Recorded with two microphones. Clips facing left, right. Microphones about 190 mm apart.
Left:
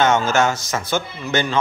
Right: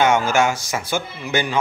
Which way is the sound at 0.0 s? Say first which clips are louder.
Even; 15° right (ahead or behind).